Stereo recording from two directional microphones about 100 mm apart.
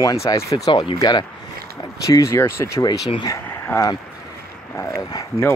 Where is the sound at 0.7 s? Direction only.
45° left (ahead or behind).